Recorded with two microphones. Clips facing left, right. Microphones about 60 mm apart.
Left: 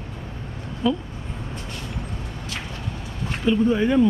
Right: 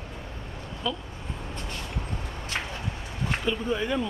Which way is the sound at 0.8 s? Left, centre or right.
Left.